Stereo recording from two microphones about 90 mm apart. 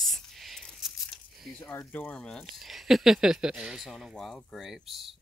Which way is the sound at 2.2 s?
5° left (ahead or behind).